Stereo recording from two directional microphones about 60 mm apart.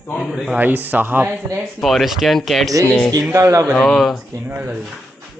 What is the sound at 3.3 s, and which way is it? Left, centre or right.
Speech, right.